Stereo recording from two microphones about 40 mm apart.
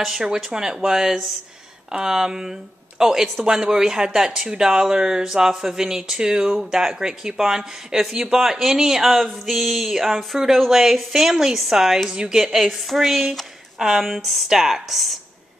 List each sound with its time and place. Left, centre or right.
0.0 s a woman's voice: centre